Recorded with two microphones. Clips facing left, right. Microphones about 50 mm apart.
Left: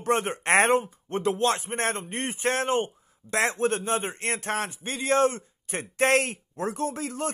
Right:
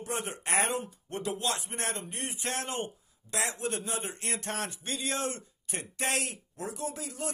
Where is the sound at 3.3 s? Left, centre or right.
Left.